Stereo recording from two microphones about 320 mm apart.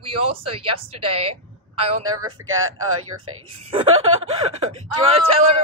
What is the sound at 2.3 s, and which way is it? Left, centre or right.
Speech, right.